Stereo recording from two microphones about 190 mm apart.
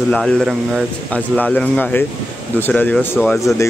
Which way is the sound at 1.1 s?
10° left (ahead or behind).